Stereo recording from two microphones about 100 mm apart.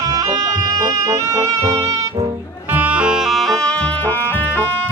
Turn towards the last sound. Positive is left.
turn(degrees=20)  # may be behind; listen again after turning